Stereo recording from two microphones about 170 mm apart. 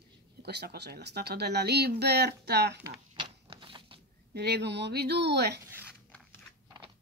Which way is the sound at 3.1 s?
30° right (ahead or behind).